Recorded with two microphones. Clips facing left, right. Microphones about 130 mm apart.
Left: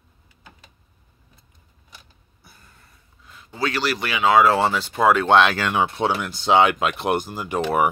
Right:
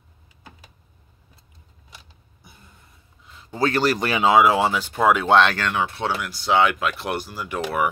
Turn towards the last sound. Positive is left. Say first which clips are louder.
# left 4 dB
turn(degrees=25)  # may be behind; listen again after turning